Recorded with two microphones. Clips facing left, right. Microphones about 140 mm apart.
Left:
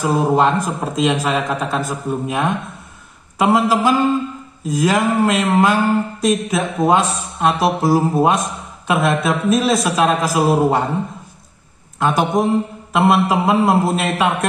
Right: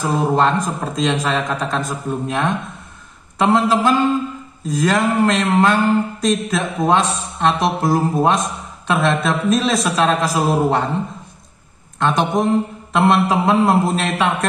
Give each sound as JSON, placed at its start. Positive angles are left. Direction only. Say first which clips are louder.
{"t": 0.0, "sound": "a man's voice", "louder": "left 2 dB", "side_deg": 10}
{"t": 12.0, "sound": "a man's voice", "louder": "left 1 dB", "side_deg": 5}